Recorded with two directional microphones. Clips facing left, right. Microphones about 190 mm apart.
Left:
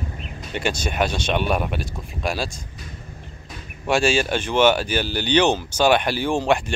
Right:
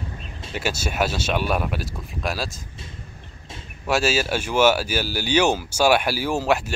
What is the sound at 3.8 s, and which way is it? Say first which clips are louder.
Speech: left 2 dB; 5° right (ahead or behind).